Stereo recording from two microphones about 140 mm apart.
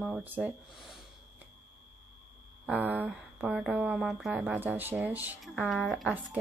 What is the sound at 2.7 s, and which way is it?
Speech, 10° right (ahead or behind).